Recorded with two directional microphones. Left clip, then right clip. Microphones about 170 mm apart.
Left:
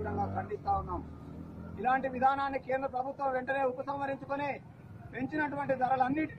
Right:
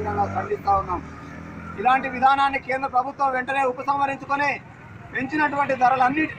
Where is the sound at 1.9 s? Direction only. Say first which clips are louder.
Right 10 dB; 10° left (ahead or behind).